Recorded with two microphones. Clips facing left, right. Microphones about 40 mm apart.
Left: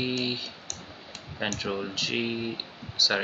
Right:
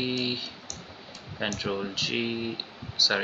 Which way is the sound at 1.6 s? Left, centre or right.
Centre.